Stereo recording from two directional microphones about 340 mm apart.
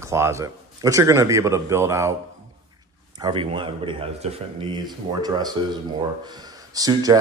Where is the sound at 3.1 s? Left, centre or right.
Centre.